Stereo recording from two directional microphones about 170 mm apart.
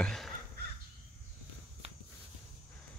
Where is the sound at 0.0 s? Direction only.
5° left (ahead or behind).